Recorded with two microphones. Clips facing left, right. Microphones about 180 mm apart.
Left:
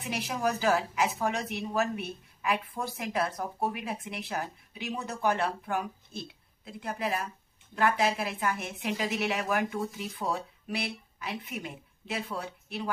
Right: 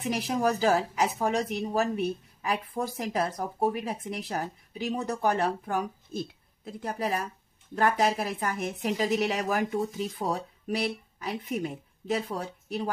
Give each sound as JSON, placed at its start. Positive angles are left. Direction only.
{"t": 0.0, "sound": "a woman's voice", "side_deg": -35}